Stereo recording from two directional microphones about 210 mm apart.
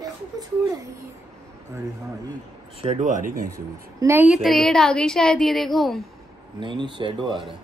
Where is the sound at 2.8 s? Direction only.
30° right (ahead or behind).